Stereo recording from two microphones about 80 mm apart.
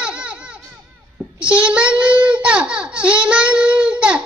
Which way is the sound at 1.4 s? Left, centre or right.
Centre.